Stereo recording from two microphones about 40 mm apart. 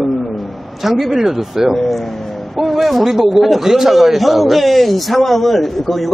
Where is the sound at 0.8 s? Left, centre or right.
Centre.